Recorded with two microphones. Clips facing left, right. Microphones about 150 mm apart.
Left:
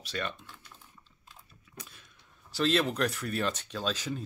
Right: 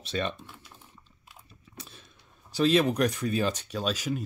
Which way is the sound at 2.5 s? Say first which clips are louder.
Right 5 dB; 15° right (ahead or behind).